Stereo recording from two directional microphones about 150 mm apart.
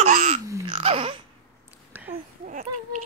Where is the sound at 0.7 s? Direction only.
40° right (ahead or behind).